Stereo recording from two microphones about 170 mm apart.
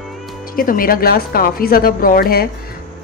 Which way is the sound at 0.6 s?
55° left (ahead or behind).